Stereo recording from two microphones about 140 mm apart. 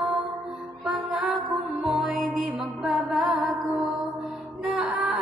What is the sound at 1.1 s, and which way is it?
Music, centre (ahead or behind).